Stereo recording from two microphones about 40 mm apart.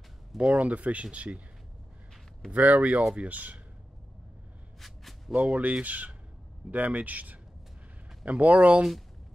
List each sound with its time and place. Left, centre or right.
0.5 s speech: right
2.5 s speech: right
4.7 s a sound: centre
5.3 s a man's voice: right